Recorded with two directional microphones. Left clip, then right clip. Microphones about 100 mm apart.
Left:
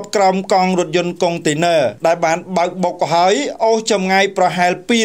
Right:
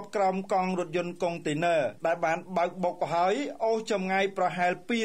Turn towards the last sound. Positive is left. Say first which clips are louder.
# left 13 dB
turn(degrees=30)  # may be behind; listen again after turning